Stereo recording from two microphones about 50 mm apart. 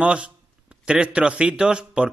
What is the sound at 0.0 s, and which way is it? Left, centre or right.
A man's voice, right.